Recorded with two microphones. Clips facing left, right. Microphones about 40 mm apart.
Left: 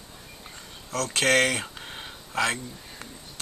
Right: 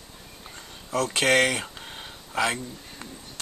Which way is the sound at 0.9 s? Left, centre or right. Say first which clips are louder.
Right 1 dB; centre.